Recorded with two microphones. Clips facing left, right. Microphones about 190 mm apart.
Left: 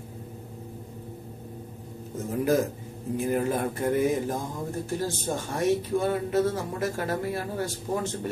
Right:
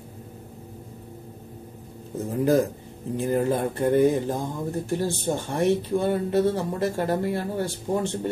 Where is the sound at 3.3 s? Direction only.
20° right (ahead or behind).